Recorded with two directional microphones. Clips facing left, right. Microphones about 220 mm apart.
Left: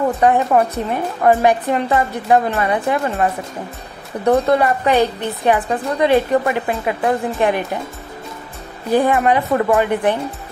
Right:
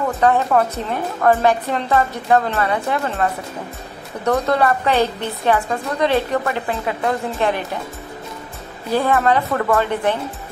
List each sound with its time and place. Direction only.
0.2 s a woman's voice: 15° left (ahead or behind)
4.3 s a woman's voice: 15° left (ahead or behind)
8.9 s a woman's voice: 15° left (ahead or behind)